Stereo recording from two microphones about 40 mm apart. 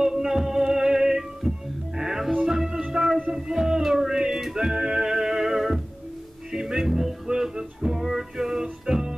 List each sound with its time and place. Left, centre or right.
0.0 s music: centre